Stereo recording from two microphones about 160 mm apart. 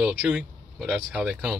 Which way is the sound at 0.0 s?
5° right (ahead or behind).